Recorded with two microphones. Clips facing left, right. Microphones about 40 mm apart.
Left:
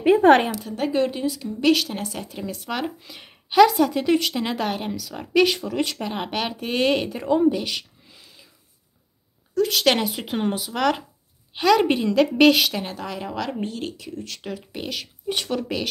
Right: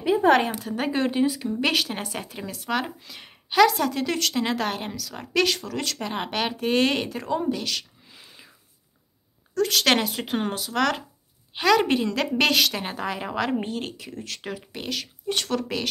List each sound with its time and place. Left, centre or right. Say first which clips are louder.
0.0 s a sound: left 4 dB; left
0.6 s speech: left 3 dB; centre
4.4 s speech: even; centre
5.9 s speech: left 1 dB; centre
9.5 s speech: left 1 dB; centre
12.8 s speech: right 1 dB; centre